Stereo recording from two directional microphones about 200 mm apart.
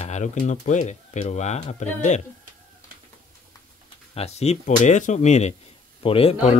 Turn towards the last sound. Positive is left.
turn(degrees=30)  # may be behind; listen again after turning